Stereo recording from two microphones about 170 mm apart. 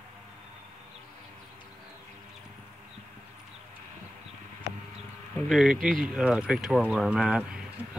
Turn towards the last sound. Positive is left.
turn(degrees=-5)  # may be behind; listen again after turning